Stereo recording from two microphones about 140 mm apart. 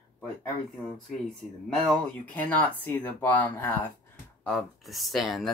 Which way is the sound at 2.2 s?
10° left (ahead or behind).